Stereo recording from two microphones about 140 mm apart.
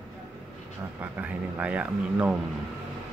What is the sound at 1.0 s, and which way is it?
Speech, 10° right (ahead or behind).